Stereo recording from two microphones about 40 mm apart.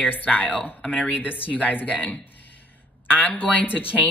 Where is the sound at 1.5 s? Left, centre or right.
Left.